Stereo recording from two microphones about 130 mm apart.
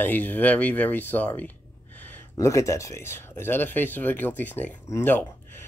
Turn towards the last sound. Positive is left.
turn(degrees=15)  # may be behind; listen again after turning